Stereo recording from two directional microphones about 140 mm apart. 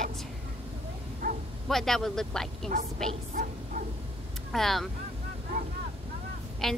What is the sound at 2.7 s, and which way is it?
Speech, 80° right.